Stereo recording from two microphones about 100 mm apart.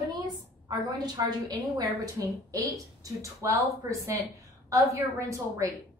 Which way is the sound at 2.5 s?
35° right (ahead or behind).